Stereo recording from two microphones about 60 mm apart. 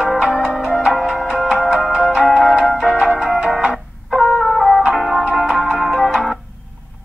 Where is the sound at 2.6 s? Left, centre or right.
Centre.